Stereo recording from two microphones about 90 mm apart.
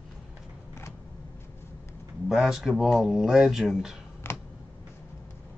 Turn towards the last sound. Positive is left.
turn(degrees=25)  # may be behind; listen again after turning